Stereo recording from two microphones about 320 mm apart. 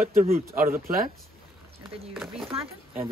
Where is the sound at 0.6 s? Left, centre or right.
Centre.